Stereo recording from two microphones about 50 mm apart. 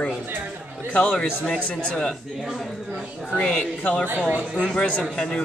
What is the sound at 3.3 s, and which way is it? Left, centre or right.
Speech, centre.